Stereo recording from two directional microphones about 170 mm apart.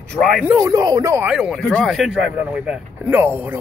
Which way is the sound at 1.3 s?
Centre (ahead or behind).